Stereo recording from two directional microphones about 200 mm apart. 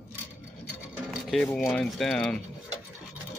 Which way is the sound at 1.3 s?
Centre (ahead or behind).